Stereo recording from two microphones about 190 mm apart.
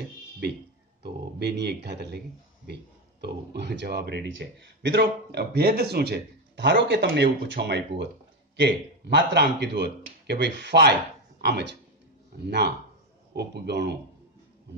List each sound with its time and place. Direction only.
1.0 s a man's voice: 60° right (ahead or behind)